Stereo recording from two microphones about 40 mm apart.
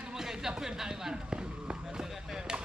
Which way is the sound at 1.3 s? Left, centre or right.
Right.